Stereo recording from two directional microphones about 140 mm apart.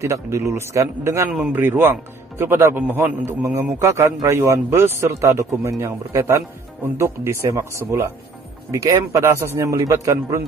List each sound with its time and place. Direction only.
0.0 s a man's voice: 20° right (ahead or behind)